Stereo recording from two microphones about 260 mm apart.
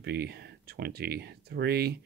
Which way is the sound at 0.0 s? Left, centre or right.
Right.